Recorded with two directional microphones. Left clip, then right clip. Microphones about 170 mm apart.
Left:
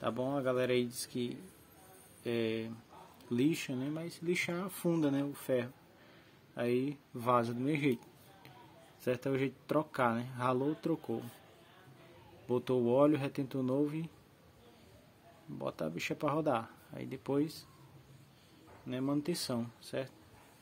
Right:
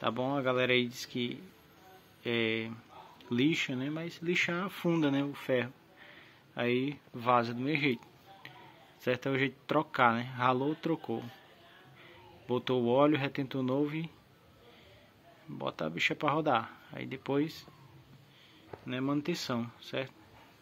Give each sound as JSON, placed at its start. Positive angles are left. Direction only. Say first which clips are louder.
{"t": 0.0, "sound": "speech", "louder": "right 3 dB", "side_deg": -5}
{"t": 7.2, "sound": "a man's voice", "louder": "right 3 dB", "side_deg": 20}
{"t": 9.0, "sound": "speech", "louder": "right 3 dB", "side_deg": 5}
{"t": 12.4, "sound": "speech", "louder": "right 2 dB", "side_deg": 10}
{"t": 15.5, "sound": "speech", "louder": "right 3 dB", "side_deg": 5}
{"t": 18.9, "sound": "speech", "louder": "right 2 dB", "side_deg": 0}